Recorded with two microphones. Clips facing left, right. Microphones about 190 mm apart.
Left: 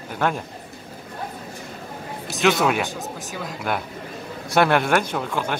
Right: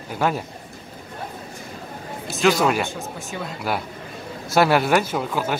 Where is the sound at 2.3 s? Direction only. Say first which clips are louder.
Right 1 dB; centre (ahead or behind).